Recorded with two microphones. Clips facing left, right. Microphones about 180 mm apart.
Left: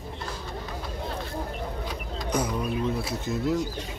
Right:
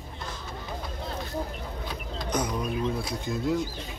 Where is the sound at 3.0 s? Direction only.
5° left (ahead or behind).